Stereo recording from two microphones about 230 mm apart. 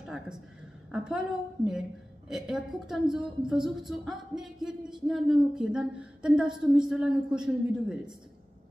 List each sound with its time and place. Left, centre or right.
0.0 s a woman's voice: centre